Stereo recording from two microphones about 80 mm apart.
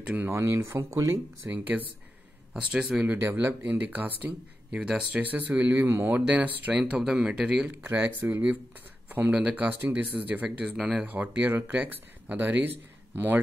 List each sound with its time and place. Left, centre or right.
0.0 s speech: right
0.3 s speech: right
2.5 s speech: centre
3.1 s speech: right
6.2 s speech: centre
7.6 s speech: right
10.6 s speech: centre